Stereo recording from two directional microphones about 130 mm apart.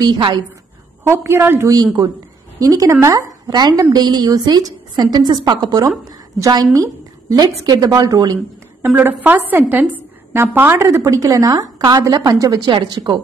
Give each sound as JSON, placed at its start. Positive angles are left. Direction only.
{"t": 0.0, "sound": "a woman's voice", "side_deg": -35}
{"t": 1.0, "sound": "a woman's voice", "side_deg": -20}
{"t": 1.7, "sound": "a woman's voice", "side_deg": -30}
{"t": 8.8, "sound": "a woman's voice", "side_deg": -15}